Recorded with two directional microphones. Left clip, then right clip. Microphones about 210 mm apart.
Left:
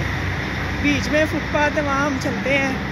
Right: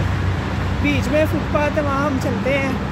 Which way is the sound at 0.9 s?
15° right (ahead or behind).